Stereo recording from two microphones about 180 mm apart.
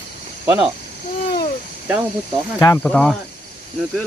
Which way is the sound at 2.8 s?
5° left (ahead or behind).